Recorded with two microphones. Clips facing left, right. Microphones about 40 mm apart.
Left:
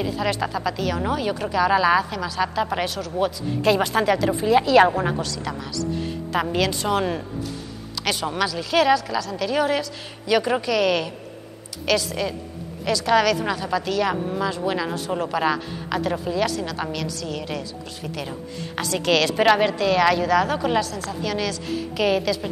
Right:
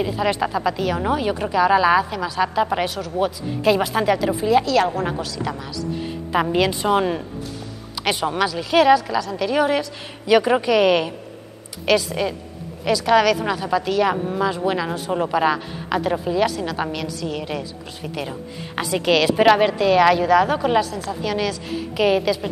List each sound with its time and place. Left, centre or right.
0.0 s a woman's voice: centre
5.0 s a woman's voice: centre